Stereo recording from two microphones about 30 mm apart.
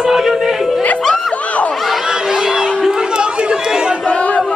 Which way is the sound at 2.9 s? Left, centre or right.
Right.